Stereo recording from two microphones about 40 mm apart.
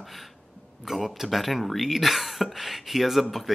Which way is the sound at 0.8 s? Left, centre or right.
Centre.